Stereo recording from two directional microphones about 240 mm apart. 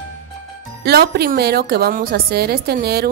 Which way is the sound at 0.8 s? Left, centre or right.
Right.